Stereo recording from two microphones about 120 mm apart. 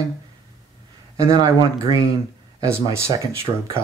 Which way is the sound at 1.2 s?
35° right (ahead or behind).